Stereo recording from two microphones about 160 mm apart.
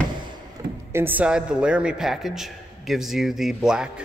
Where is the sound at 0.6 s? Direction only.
25° right (ahead or behind).